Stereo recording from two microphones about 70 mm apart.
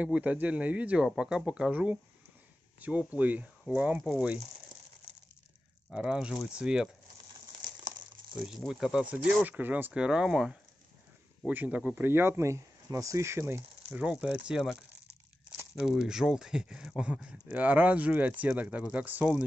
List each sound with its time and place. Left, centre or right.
0.0 s speech: centre
1.0 s speech: centre
5.9 s speech: centre
8.5 s speech: centre
9.0 s speech: right
9.9 s speech: centre
11.4 s speech: right
13.9 s speech: centre
16.0 s speech: centre